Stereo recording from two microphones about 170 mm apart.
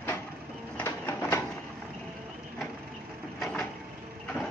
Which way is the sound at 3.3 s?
Centre (ahead or behind).